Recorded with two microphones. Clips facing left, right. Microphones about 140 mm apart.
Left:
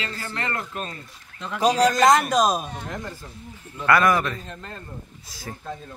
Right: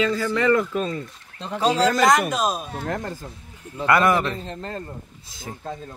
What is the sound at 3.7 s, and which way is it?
A man's voice, 25° right (ahead or behind).